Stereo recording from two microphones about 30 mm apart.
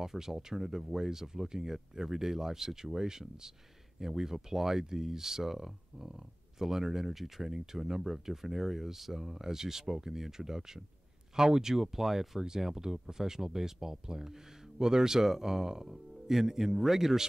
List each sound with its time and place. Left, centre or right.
0.0 s speech: centre